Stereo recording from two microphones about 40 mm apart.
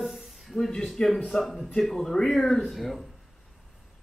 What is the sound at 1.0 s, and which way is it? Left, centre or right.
Speech, left.